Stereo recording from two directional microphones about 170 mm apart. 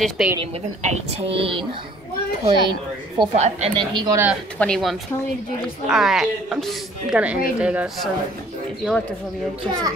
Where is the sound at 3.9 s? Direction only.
20° right (ahead or behind).